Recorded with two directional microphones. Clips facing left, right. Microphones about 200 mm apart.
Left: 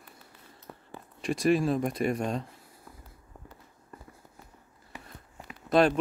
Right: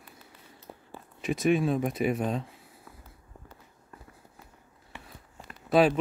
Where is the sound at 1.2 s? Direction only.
Centre (ahead or behind).